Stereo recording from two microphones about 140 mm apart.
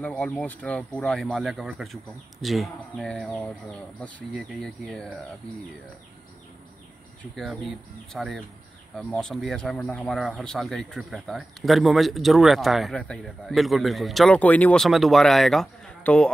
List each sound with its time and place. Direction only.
0.0 s speech: 10° left (ahead or behind)
7.3 s speech: centre (ahead or behind)
14.9 s speech: centre (ahead or behind)